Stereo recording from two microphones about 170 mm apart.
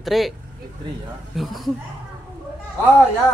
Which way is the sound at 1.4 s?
Centre (ahead or behind).